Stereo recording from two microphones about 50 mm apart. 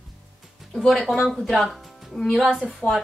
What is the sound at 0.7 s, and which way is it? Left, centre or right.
Speech, centre.